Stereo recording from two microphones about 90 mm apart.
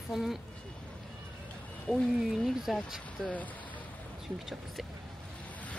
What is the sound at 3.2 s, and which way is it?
Speech, 15° left (ahead or behind).